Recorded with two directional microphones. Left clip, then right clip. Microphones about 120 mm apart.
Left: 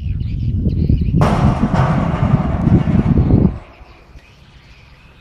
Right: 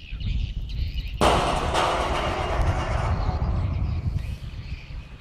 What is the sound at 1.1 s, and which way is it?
Music, 20° right (ahead or behind).